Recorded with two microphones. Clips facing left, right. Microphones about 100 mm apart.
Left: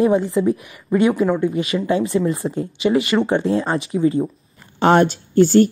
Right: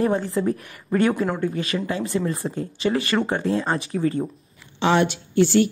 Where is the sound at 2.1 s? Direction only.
30° left (ahead or behind).